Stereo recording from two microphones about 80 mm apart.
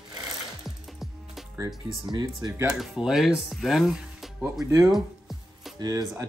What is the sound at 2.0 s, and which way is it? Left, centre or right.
Speech, right.